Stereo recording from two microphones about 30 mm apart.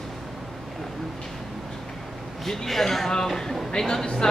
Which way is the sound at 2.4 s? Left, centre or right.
Centre.